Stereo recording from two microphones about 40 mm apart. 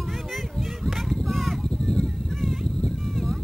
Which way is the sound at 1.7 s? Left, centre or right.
Left.